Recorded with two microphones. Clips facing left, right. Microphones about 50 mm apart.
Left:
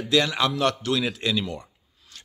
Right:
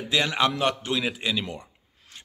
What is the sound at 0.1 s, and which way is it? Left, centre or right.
A man's voice, right.